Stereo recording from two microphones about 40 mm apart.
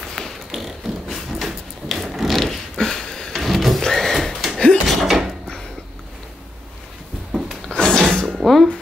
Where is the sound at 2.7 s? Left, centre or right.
Centre.